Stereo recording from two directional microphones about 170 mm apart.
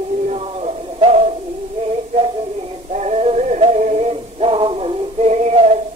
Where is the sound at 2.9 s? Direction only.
40° right (ahead or behind).